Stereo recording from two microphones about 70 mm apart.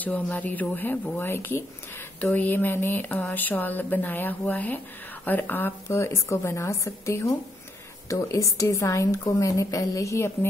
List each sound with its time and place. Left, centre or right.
0.0 s speech: left
5.9 s a woman's voice: left